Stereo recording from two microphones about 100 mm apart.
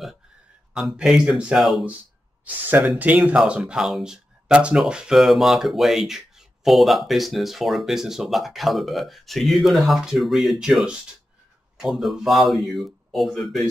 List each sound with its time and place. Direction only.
0.7 s speech: 5° right (ahead or behind)
2.4 s speech: 15° right (ahead or behind); by 13.7 s centre (ahead or behind)